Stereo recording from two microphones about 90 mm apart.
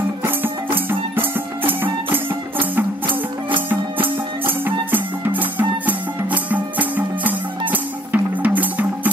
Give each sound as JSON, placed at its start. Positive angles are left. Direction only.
{"t": 0.7, "sound": "music", "side_deg": -20}
{"t": 3.1, "sound": "music", "side_deg": -70}
{"t": 4.5, "sound": "music", "side_deg": -20}